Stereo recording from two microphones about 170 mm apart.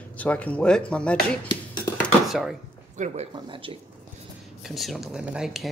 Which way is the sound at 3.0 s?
45° right (ahead or behind).